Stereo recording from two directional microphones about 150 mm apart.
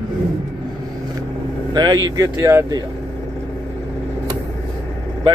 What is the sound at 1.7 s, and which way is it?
Speech, 30° right (ahead or behind).